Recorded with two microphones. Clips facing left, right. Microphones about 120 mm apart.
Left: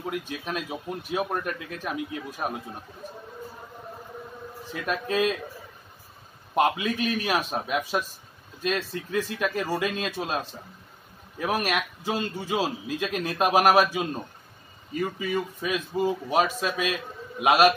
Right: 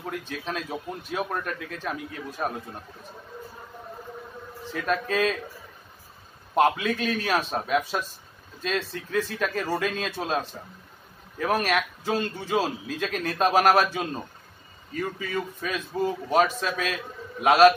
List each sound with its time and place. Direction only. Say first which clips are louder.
0.0 s a man's voice: left 1 dB; 15° left (ahead or behind)
4.8 s a man's voice: even; 10° left (ahead or behind)
6.5 s a man's voice: right 2 dB; 5° left (ahead or behind)